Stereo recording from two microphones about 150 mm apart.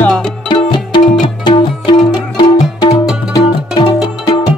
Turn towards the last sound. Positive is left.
turn(degrees=25)  # may be behind; listen again after turning